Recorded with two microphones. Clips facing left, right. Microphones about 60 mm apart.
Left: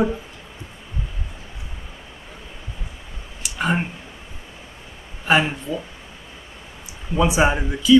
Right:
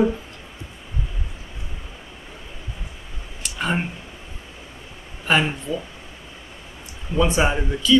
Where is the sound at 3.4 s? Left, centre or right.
Centre.